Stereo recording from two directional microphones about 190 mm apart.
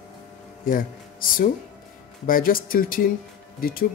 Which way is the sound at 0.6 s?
45° left (ahead or behind).